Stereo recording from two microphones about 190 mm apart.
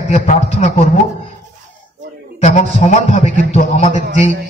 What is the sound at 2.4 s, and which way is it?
A man's voice, 35° left (ahead or behind).